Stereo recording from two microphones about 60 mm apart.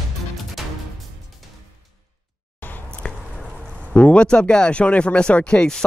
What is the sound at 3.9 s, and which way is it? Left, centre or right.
Speech, centre.